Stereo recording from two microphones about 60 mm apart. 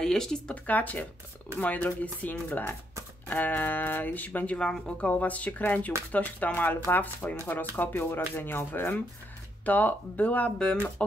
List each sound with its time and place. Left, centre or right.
0.0 s speech: centre
0.7 s speech: left
4.6 s speech: centre
5.1 s speech: left